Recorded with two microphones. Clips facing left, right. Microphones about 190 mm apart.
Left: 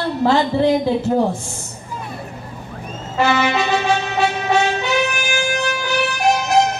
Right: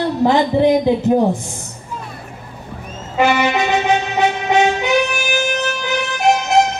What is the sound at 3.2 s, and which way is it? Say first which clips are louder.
Music: right 2 dB; 15° right (ahead or behind).